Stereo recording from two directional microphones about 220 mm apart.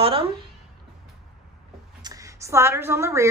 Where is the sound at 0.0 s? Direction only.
25° right (ahead or behind).